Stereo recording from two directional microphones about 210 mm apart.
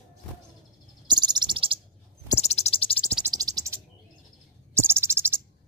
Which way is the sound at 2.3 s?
30° left (ahead or behind).